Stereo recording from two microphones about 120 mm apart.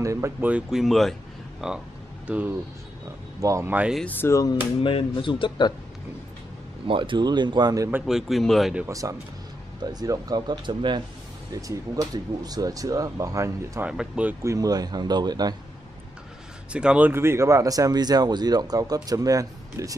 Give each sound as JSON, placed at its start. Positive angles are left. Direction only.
{"t": 0.0, "sound": "speech", "side_deg": -25}
{"t": 0.4, "sound": "speech", "side_deg": -10}
{"t": 3.3, "sound": "speech", "side_deg": -25}
{"t": 4.0, "sound": "speech", "side_deg": 15}
{"t": 4.7, "sound": "speech", "side_deg": 50}
{"t": 6.9, "sound": "speech", "side_deg": -45}
{"t": 8.0, "sound": "speech", "side_deg": -5}
{"t": 8.8, "sound": "speech", "side_deg": -30}
{"t": 11.5, "sound": "speech", "side_deg": -30}
{"t": 13.8, "sound": "speech", "side_deg": -10}
{"t": 14.4, "sound": "speech", "side_deg": -25}
{"t": 16.7, "sound": "speech", "side_deg": -10}
{"t": 17.1, "sound": "speech", "side_deg": -20}